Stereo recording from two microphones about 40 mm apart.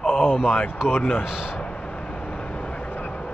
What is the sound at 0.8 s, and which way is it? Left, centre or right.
Speech, centre.